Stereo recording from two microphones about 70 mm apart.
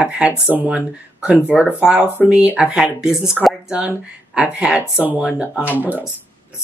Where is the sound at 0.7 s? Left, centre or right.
Centre.